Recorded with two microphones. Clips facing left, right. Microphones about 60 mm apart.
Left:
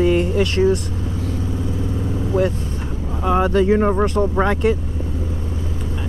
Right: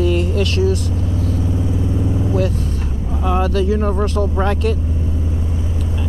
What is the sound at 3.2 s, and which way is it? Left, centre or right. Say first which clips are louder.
Speech: left 2 dB; centre.